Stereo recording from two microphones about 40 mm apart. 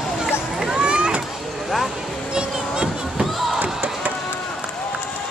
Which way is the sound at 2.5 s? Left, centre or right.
Centre.